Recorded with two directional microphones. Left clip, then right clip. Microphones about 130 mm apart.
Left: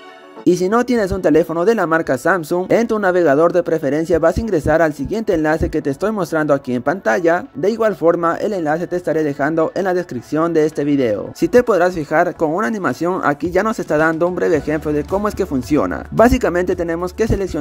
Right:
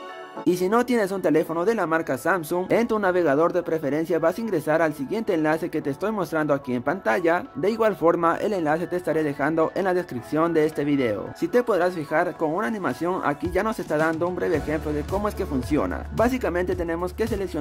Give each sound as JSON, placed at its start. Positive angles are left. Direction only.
{"t": 0.5, "sound": "speech", "side_deg": 25}
{"t": 11.4, "sound": "speech", "side_deg": 35}